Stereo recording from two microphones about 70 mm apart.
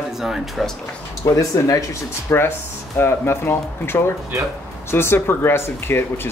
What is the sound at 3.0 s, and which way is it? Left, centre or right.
Speech, left.